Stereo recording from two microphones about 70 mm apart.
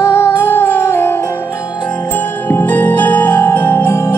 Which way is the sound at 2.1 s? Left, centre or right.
Left.